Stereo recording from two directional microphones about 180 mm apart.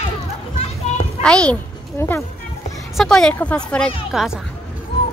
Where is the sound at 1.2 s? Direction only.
5° left (ahead or behind).